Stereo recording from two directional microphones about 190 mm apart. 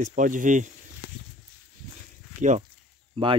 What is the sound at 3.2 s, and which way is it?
Speech, 25° right (ahead or behind).